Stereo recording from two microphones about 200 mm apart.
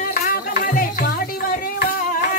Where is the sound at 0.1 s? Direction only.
45° left (ahead or behind).